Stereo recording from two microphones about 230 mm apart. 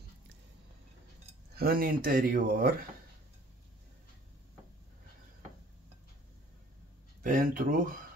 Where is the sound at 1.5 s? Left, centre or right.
Right.